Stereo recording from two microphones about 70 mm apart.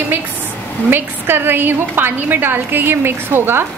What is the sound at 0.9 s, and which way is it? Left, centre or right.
A woman's voice, right.